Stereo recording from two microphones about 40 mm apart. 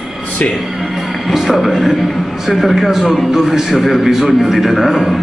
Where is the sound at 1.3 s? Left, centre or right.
Centre.